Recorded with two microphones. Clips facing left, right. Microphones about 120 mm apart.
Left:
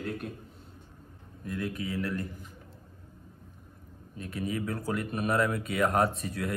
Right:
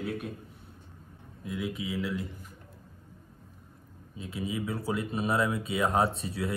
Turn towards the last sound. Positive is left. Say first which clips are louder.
# even
turn(degrees=-25)  # may be behind; listen again after turning